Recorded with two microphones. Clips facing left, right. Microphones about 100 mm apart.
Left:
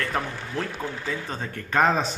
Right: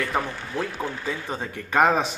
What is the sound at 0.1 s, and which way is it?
A man's voice, 5° right (ahead or behind).